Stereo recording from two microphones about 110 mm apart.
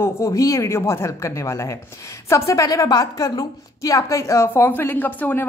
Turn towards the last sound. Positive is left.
turn(degrees=15)  # may be behind; listen again after turning